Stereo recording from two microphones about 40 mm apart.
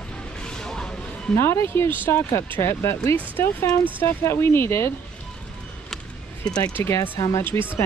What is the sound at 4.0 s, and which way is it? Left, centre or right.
Speech, left.